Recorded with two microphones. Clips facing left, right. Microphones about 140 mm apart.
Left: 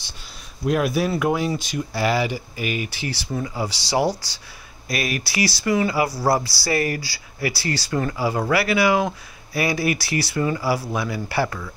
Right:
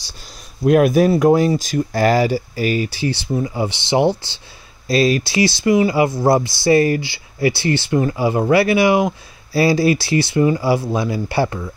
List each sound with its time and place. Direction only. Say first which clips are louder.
0.7 s speech: right 8 dB; 55° right (ahead or behind); by 11.7 s 25° right (ahead or behind)